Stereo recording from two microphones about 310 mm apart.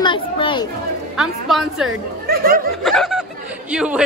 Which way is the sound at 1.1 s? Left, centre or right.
Centre.